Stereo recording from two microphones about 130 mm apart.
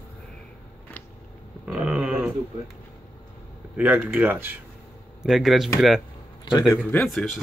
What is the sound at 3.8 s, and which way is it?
Speech, 15° right (ahead or behind).